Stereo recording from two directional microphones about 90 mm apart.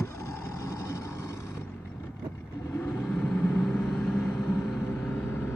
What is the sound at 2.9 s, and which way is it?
Vehicle, 5° left (ahead or behind).